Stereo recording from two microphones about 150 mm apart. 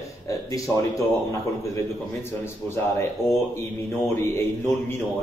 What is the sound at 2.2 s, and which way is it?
A man's voice, 15° left (ahead or behind).